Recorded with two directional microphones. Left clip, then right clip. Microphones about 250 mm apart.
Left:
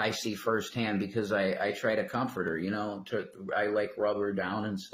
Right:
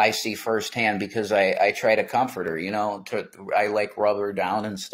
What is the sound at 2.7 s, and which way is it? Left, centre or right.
Speech, right.